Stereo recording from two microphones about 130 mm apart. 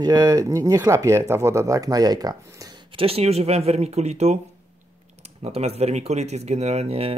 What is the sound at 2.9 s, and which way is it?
Speech, 50° right (ahead or behind).